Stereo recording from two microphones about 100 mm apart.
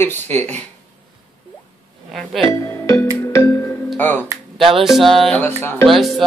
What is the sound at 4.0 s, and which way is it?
Speech, 20° left (ahead or behind).